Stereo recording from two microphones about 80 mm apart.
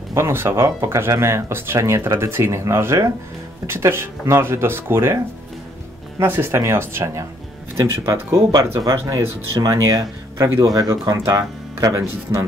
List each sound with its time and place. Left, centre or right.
0.1 s speech: right
7.7 s speech: right